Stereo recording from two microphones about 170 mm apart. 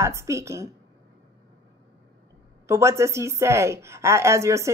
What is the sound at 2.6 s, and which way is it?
Speech, 15° right (ahead or behind).